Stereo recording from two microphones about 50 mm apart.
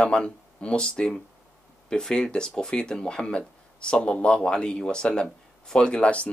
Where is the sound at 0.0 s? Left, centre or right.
Left.